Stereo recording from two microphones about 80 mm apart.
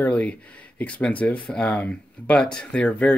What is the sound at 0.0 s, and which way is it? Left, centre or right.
Speech, centre.